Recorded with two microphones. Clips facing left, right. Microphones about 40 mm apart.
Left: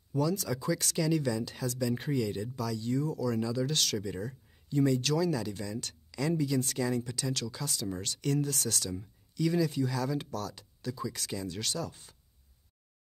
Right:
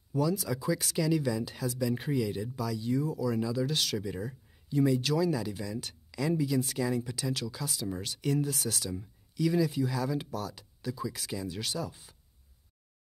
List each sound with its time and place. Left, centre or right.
0.1 s speech: centre